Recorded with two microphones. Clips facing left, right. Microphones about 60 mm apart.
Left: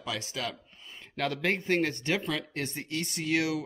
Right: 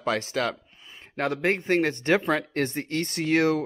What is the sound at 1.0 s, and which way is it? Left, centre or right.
Speech, right.